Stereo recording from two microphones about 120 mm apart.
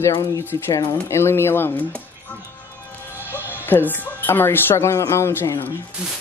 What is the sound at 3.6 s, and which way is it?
Speech, 15° left (ahead or behind).